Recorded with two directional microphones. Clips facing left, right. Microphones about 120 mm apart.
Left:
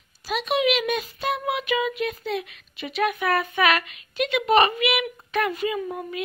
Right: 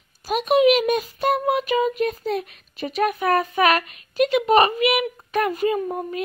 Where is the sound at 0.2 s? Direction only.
45° right (ahead or behind).